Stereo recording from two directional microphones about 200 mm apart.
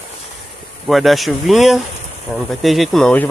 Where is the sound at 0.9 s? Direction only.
Centre (ahead or behind).